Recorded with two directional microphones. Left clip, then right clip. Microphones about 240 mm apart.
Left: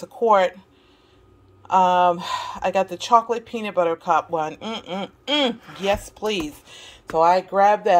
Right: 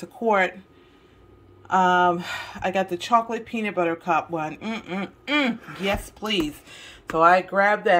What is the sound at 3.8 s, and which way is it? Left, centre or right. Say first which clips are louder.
Speech: left 3 dB; centre.